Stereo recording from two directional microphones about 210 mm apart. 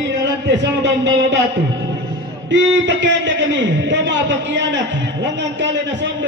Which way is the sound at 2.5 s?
60° right (ahead or behind).